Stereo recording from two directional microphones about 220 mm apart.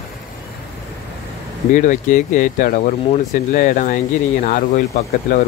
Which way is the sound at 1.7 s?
35° left (ahead or behind).